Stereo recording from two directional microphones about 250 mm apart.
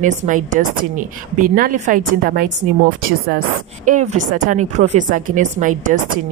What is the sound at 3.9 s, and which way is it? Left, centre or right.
A woman's voice, right.